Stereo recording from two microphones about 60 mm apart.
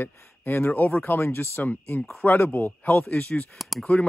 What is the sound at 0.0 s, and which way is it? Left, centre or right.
Speech, left.